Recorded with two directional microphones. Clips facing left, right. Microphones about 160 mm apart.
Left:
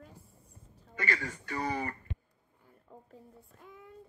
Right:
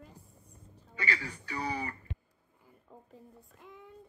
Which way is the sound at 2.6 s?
5° right (ahead or behind).